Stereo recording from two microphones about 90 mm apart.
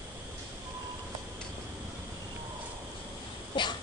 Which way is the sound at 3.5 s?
60° left (ahead or behind).